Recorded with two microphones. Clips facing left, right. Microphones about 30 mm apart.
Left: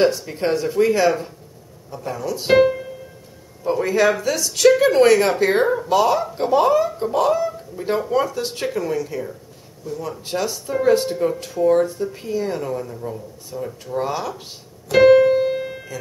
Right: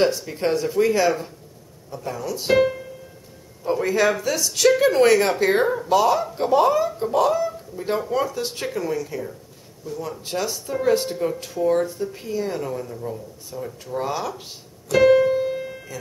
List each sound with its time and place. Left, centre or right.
0.0 s speech: centre
14.9 s keyboard: left
15.3 s piano: left